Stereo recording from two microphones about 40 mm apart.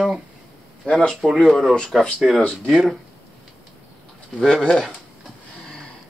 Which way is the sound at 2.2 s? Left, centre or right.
Centre.